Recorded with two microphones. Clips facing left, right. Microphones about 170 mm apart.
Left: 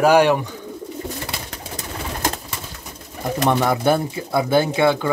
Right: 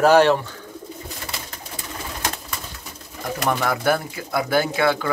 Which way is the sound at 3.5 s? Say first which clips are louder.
Left 3 dB; 25° left (ahead or behind).